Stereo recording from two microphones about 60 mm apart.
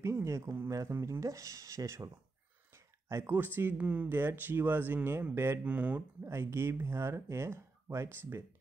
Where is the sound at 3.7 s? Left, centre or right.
Right.